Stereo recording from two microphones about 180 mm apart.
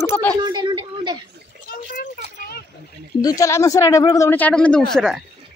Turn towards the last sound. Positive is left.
turn(degrees=0)  # may be behind; listen again after turning